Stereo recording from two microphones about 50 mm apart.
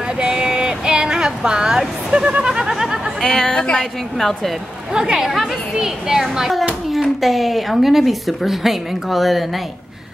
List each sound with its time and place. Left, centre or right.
0.2 s a sound: centre
3.2 s speech: centre
4.9 s speech: centre
5.2 s speech: centre